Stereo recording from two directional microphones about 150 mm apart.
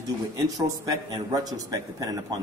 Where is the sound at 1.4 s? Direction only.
25° right (ahead or behind).